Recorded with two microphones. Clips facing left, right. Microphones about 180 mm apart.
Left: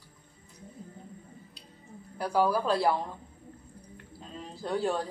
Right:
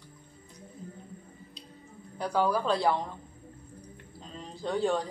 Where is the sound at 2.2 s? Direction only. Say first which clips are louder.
Left 1 dB; 5° left (ahead or behind).